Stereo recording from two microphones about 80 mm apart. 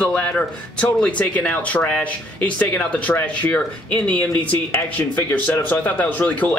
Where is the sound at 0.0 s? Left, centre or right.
Centre.